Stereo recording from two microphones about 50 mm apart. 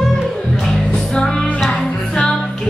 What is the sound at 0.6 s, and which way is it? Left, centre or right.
Music, centre.